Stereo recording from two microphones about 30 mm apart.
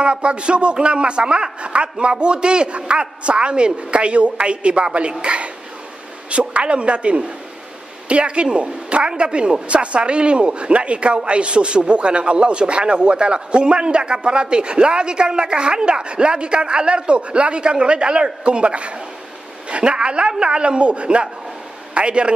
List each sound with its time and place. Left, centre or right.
0.0 s a man's voice: right